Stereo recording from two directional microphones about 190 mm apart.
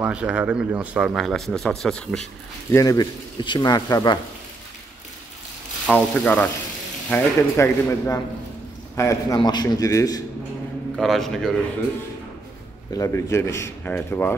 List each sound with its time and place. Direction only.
0.0 s speech: 5° right (ahead or behind)
2.7 s speech: 20° left (ahead or behind)
5.9 s speech: 5° left (ahead or behind)
11.0 s speech: centre (ahead or behind)
12.9 s speech: 15° left (ahead or behind)